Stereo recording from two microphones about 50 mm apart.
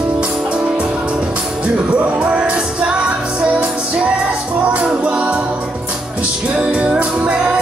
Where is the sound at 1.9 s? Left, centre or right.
Right.